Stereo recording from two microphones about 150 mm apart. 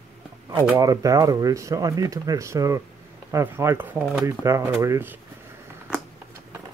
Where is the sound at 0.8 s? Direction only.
25° right (ahead or behind).